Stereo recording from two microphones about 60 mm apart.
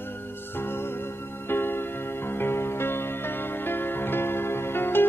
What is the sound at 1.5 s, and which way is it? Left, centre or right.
Music, left.